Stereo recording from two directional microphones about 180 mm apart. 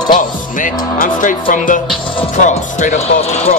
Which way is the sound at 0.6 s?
50° left (ahead or behind).